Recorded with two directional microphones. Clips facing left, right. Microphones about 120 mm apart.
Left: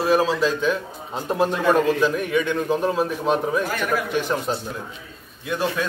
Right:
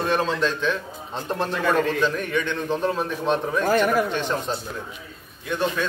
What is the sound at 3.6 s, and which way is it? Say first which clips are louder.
Speech: right 5 dB; 40° right (ahead or behind).